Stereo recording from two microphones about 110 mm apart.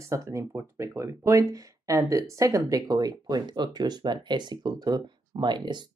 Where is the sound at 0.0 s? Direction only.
30° right (ahead or behind).